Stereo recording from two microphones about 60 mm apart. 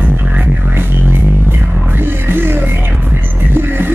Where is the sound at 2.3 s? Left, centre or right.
Right.